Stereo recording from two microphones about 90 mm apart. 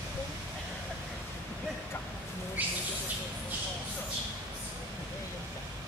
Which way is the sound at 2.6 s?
15° right (ahead or behind).